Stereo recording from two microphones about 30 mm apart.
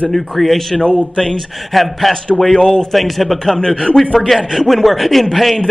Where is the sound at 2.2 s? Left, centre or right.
Left.